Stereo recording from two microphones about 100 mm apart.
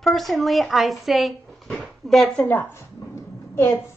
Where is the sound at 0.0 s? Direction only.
5° left (ahead or behind).